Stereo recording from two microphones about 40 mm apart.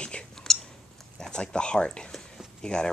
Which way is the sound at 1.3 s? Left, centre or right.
Left.